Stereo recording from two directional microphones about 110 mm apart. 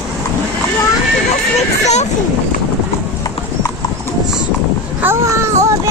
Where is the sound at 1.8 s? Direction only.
90° left.